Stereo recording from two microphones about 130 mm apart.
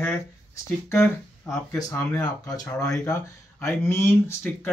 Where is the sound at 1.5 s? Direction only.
25° left (ahead or behind).